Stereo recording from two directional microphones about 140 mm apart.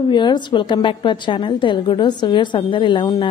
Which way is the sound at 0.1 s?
35° left (ahead or behind).